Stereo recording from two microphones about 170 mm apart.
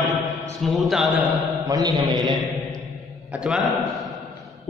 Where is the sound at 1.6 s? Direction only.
20° right (ahead or behind).